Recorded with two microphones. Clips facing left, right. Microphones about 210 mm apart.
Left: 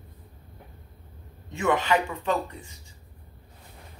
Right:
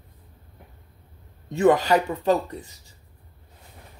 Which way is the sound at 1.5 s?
35° right (ahead or behind).